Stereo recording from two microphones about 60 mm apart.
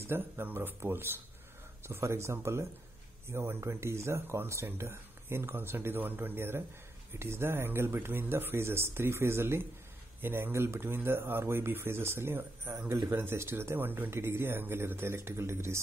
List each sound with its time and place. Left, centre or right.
0.1 s speech: right
13.1 s speech: right